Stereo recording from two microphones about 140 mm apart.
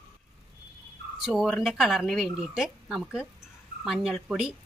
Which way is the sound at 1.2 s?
Centre (ahead or behind).